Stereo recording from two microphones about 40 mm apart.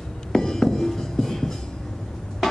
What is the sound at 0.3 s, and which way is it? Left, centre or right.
Music, centre.